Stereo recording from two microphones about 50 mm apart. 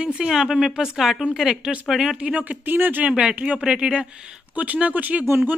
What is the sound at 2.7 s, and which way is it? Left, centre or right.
Speech, right.